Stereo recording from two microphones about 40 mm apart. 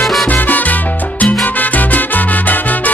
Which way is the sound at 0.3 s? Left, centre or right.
Left.